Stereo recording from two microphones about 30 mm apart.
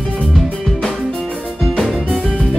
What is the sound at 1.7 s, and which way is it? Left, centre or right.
Music, centre.